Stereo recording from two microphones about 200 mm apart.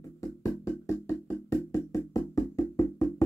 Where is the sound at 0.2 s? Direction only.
15° left (ahead or behind).